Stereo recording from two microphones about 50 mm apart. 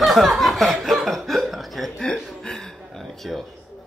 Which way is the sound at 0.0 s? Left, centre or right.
Centre.